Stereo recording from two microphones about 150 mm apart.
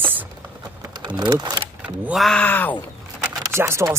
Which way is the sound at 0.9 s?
30° right (ahead or behind).